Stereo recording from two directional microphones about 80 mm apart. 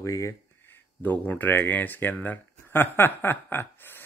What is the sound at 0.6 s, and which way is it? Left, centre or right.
Speech, left.